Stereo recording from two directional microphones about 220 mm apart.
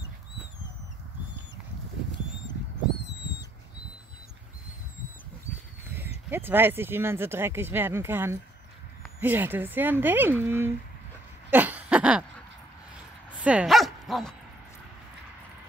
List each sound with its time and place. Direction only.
6.3 s speech: 10° right (ahead or behind)
11.5 s a sound: 5° right (ahead or behind)
13.4 s speech: 5° right (ahead or behind)